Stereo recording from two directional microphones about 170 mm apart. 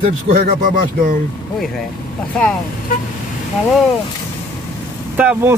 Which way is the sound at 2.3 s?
5° left (ahead or behind).